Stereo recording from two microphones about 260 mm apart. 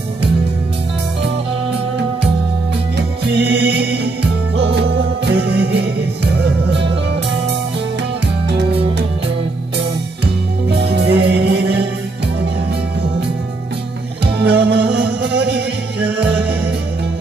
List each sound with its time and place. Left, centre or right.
3.3 s music: right
10.7 s music: right
14.4 s music: right
16.1 s music: centre